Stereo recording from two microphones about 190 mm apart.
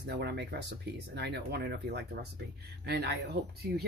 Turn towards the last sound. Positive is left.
turn(degrees=-60)  # may be behind; listen again after turning